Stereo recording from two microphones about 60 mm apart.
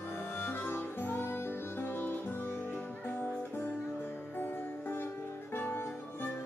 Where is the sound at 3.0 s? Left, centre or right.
Left.